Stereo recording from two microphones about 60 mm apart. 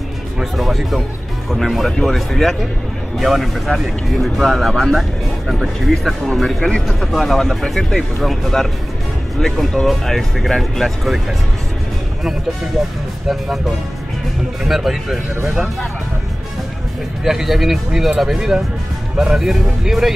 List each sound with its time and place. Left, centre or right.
0.4 s speech: centre
14.6 s speech: centre
17.2 s speech: centre